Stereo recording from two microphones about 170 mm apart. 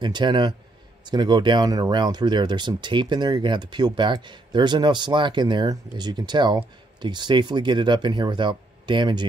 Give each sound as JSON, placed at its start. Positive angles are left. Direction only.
{"t": 0.0, "sound": "speech", "side_deg": -25}